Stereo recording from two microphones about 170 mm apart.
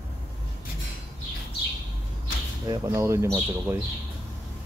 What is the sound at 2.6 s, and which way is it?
Speech, 20° right (ahead or behind).